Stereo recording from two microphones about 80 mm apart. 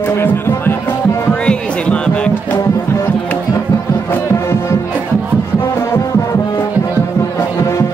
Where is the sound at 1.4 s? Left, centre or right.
Centre.